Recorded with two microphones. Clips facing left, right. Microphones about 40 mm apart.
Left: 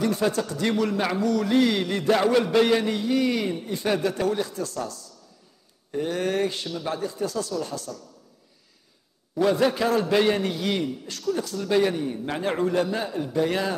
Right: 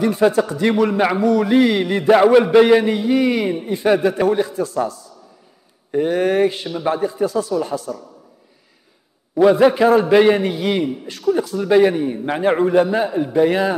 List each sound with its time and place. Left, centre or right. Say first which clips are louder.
0.0 s speech: right 8 dB; centre
9.3 s speech: right 9 dB; right